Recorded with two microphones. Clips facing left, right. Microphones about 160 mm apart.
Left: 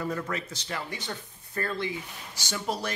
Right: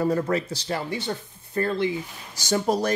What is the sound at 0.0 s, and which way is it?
Speech, 35° right (ahead or behind).